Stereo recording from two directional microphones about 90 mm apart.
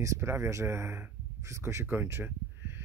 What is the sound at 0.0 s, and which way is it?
Speech, 30° right (ahead or behind).